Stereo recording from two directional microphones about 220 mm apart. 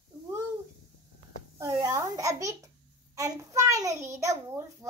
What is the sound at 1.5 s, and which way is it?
A child's voice, 15° right (ahead or behind).